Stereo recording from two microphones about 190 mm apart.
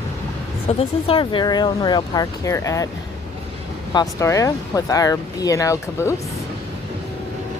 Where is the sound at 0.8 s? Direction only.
30° left (ahead or behind).